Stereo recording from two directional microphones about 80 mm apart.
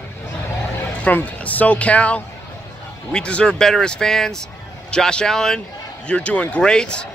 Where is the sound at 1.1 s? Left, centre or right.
Centre.